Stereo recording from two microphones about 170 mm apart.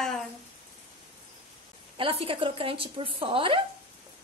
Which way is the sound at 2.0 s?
35° right (ahead or behind).